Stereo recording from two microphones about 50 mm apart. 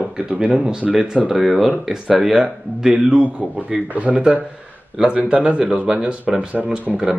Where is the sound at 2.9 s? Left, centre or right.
Right.